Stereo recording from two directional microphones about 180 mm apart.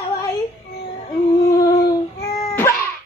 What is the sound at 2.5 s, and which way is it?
Cough, 15° left (ahead or behind).